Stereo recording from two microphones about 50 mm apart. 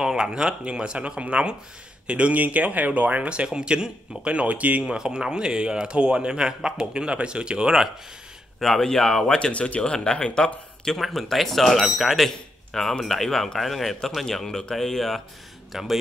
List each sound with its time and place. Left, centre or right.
0.0 s speech: centre; by 4.8 s right
4.8 s speech: centre
8.5 s speech: centre
9.5 s speech: left
10.9 s speech: centre